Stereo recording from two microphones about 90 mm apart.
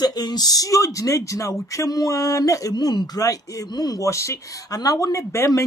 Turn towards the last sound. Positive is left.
turn(degrees=35)  # may be behind; listen again after turning